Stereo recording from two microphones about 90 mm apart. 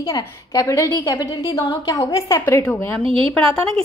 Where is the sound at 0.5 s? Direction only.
45° left (ahead or behind); by 2.9 s 25° left (ahead or behind).